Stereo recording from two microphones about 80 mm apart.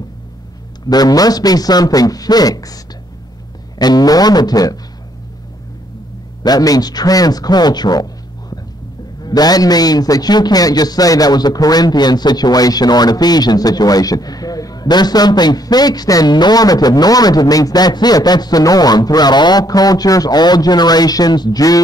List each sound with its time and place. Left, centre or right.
0.8 s a man's voice: left
6.4 s a man's voice: left